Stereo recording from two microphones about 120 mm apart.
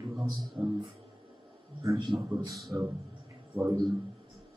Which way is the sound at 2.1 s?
35° right (ahead or behind).